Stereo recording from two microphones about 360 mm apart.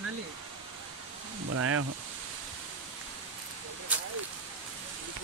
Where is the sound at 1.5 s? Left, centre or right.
Right.